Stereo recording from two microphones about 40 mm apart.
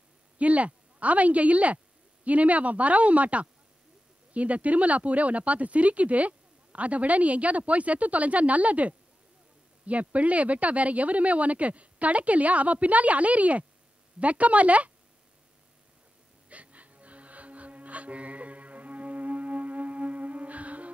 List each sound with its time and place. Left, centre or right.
0.4 s a woman's voice: right
16.4 s music: right